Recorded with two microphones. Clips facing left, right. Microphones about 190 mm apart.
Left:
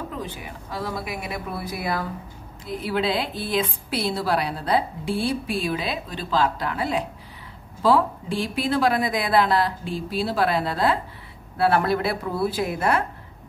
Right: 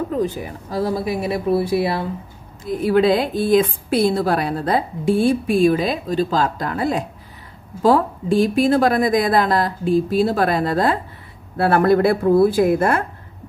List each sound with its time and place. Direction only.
0.1 s speech: 45° right (ahead or behind)
2.6 s a woman's voice: 50° right (ahead or behind)